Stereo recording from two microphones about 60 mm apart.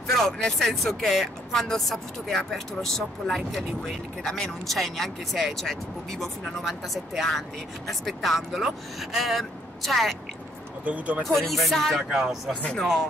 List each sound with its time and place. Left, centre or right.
0.0 s speech: centre
10.9 s speech: right
11.3 s speech: centre
12.1 s speech: centre